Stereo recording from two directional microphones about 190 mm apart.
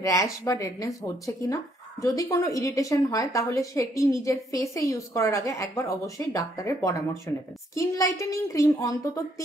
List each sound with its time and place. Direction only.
0.0 s speech: 15° left (ahead or behind)